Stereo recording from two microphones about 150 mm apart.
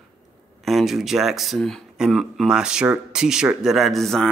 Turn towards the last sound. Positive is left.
turn(degrees=0)  # may be behind; listen again after turning